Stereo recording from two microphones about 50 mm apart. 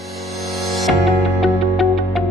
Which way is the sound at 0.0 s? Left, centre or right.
Centre.